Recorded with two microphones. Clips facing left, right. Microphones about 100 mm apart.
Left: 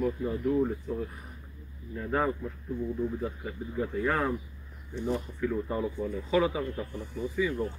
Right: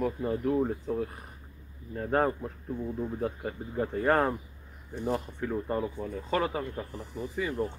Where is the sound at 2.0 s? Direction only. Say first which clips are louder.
Right 2 dB; 50° right (ahead or behind).